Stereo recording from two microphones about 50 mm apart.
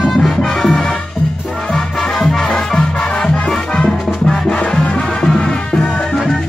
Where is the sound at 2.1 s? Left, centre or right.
Centre.